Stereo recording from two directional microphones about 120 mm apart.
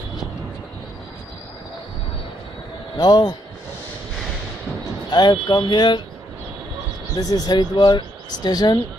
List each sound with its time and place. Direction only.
3.0 s speech: 35° left (ahead or behind)
5.1 s speech: 40° left (ahead or behind)
7.2 s speech: 35° left (ahead or behind)